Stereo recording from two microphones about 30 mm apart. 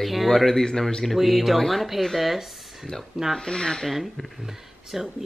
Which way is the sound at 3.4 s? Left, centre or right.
Left.